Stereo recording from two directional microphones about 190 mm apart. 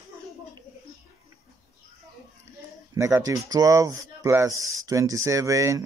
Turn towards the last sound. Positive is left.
turn(degrees=-15)  # may be behind; listen again after turning